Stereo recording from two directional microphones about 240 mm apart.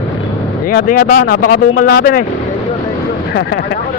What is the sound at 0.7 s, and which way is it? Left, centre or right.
A man's voice, left.